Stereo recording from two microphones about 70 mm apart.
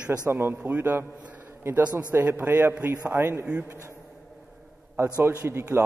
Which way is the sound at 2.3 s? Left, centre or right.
Right.